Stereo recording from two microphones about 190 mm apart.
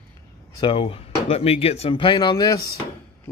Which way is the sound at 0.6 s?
30° left (ahead or behind).